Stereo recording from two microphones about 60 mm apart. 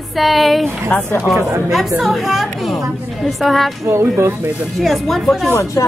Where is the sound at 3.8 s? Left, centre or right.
Right.